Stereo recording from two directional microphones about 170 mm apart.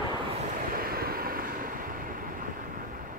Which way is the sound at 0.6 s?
60° right (ahead or behind).